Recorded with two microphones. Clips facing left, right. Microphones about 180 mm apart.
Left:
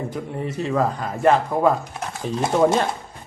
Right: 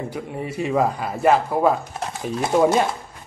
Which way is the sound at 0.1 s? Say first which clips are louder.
Left 1 dB; 10° right (ahead or behind).